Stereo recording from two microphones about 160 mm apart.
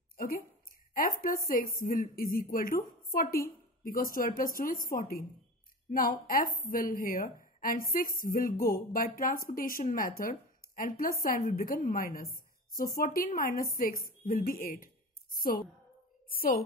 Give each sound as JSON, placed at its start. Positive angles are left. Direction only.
{"t": 0.2, "sound": "a sound", "side_deg": 65}
{"t": 1.2, "sound": "a woman's voice", "side_deg": 65}
{"t": 16.3, "sound": "a woman's voice", "side_deg": 65}